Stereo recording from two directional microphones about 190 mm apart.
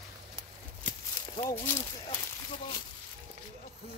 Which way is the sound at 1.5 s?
15° left (ahead or behind).